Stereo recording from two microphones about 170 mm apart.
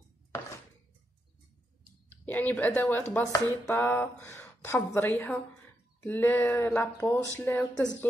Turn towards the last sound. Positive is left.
turn(degrees=15)  # may be behind; listen again after turning